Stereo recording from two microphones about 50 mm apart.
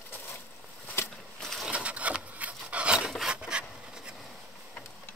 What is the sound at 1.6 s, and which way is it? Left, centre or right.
Wood, right.